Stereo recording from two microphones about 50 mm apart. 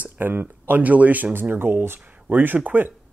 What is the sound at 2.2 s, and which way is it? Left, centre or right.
Speech, right.